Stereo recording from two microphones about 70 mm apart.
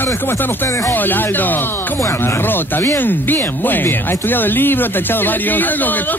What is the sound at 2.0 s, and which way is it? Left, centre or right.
Speech, left.